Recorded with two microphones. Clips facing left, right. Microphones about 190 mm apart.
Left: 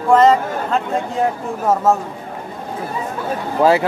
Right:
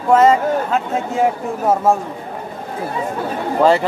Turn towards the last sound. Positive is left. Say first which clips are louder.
# even
turn(degrees=5)  # may be behind; listen again after turning